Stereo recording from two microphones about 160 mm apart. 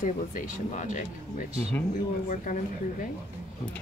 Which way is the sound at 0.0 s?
55° left (ahead or behind).